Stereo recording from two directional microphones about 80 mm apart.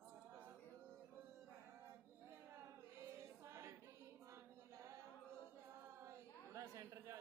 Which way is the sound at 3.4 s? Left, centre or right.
Right.